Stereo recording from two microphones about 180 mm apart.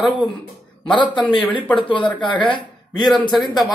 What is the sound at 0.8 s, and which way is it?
Speech, 25° left (ahead or behind).